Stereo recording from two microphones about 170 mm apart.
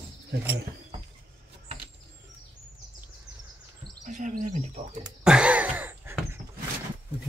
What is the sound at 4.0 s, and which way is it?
Bird, 45° right (ahead or behind).